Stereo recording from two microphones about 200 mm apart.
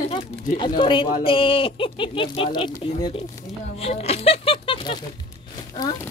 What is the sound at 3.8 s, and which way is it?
Music, 30° left (ahead or behind).